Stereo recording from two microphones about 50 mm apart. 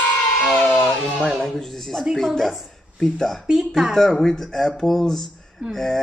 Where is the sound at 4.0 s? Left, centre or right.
Centre.